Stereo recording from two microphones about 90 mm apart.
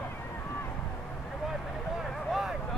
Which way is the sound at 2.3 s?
5° right (ahead or behind).